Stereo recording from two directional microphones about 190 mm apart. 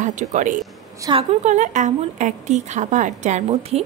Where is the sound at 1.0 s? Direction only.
30° right (ahead or behind).